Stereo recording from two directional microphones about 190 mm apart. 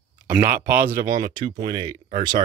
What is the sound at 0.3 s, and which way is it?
Speech, 10° right (ahead or behind).